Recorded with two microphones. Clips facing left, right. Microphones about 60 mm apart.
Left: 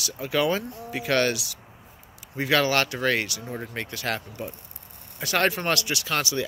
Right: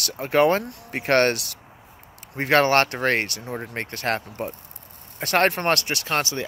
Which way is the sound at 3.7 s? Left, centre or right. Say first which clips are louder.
Right 4 dB; right.